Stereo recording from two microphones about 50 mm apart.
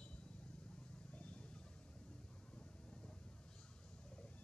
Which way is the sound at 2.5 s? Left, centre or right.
Centre.